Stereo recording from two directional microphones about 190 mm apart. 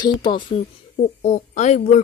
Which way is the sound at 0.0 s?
25° left (ahead or behind).